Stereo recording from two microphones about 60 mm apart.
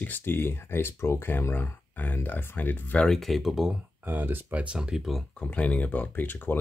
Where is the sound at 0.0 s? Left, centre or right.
Left.